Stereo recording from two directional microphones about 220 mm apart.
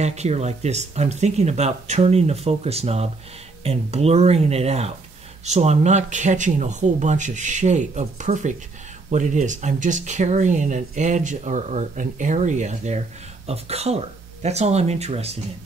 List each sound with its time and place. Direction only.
0.0 s speech: 30° right (ahead or behind)